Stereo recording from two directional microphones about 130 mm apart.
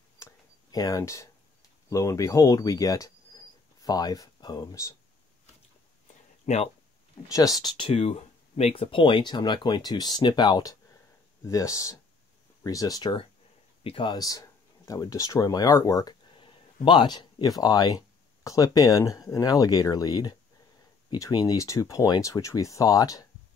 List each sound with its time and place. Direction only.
0.2 s a sound: 30° left (ahead or behind)
1.9 s speech: 25° left (ahead or behind)
6.4 s speech: 60° left (ahead or behind)
7.3 s speech: 30° left (ahead or behind)
13.8 s speech: 40° left (ahead or behind)